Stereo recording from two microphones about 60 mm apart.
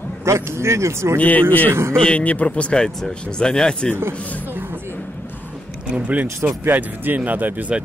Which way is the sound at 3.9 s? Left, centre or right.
Right.